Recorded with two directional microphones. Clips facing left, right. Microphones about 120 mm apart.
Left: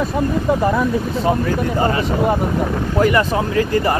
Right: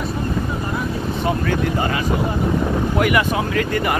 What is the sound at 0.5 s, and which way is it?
Vehicle, 90° left.